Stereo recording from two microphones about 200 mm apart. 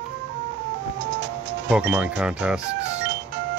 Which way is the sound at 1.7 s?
5° right (ahead or behind).